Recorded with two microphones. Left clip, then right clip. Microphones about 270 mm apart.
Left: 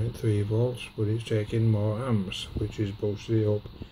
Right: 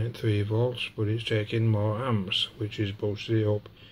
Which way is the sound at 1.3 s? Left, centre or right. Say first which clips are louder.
Right 1 dB; centre.